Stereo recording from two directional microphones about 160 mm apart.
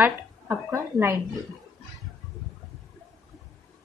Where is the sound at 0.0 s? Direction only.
10° right (ahead or behind).